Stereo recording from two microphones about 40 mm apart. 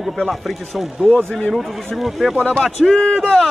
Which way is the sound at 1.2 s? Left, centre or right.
Left.